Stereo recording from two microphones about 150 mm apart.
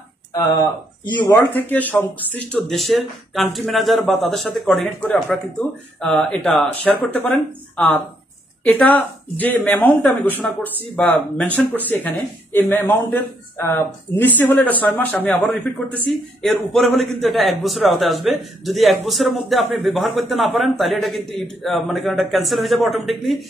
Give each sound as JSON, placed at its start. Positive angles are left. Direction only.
{"t": 0.3, "sound": "speech", "side_deg": 20}
{"t": 1.5, "sound": "a man's voice", "side_deg": 10}